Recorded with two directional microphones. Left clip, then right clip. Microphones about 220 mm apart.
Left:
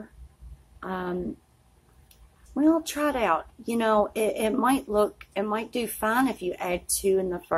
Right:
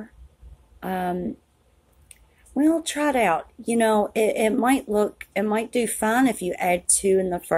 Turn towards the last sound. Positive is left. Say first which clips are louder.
# right 4 dB
turn(degrees=-15)  # may be behind; listen again after turning